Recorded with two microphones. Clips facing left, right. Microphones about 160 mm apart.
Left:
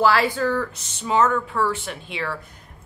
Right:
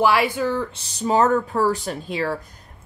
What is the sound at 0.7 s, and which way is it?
Speech, 35° right (ahead or behind).